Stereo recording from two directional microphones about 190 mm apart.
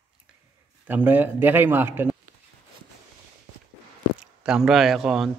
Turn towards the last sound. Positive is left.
turn(degrees=0)  # may be behind; listen again after turning